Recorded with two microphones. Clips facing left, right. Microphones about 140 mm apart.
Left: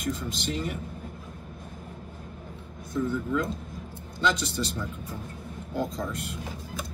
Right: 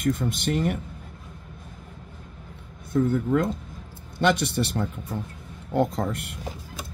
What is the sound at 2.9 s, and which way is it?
Speech, 60° right (ahead or behind).